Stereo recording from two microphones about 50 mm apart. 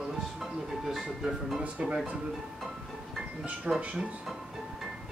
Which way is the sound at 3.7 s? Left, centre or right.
Centre.